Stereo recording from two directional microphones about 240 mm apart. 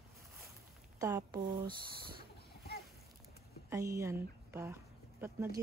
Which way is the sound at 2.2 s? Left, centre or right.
Left.